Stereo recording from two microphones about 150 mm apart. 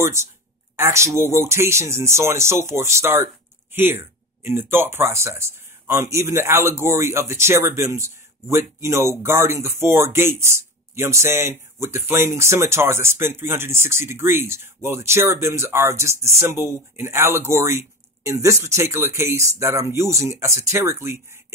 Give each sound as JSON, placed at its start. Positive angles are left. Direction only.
{"t": 0.0, "sound": "speech", "side_deg": -20}